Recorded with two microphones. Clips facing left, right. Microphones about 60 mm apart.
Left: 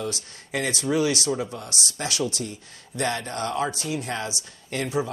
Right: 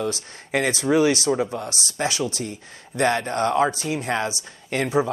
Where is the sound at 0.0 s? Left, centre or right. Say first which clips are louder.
Right 4 dB; right.